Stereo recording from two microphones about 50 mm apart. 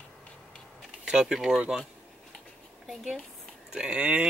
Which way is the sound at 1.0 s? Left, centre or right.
Centre.